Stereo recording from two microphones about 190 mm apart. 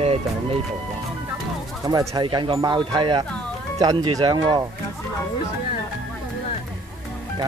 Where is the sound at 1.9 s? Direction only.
20° right (ahead or behind).